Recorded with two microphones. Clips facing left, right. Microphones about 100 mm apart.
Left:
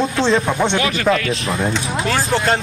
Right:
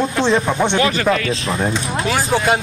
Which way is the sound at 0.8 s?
35° right (ahead or behind).